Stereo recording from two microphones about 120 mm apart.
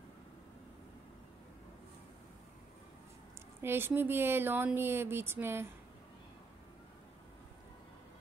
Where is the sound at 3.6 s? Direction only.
20° right (ahead or behind).